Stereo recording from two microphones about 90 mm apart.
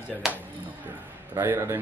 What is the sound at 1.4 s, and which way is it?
Speech, 30° right (ahead or behind).